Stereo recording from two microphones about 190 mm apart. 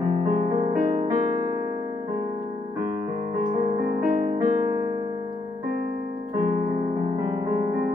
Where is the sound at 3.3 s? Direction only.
40° right (ahead or behind).